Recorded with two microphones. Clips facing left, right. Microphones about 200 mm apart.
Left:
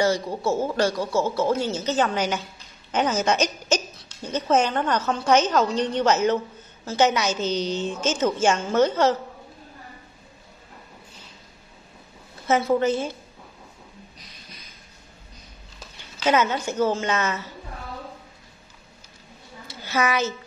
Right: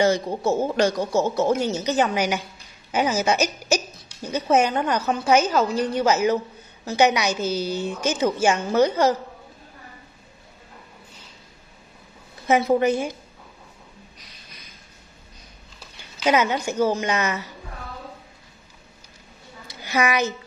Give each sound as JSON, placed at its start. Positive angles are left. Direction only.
{"t": 0.0, "sound": "speech", "side_deg": -20}
{"t": 12.4, "sound": "speech", "side_deg": -15}
{"t": 16.2, "sound": "speech", "side_deg": -15}
{"t": 19.7, "sound": "a woman's voice", "side_deg": -15}